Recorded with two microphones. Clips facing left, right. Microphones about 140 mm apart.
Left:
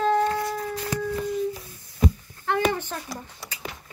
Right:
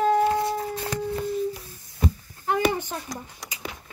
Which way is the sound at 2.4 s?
15° right (ahead or behind).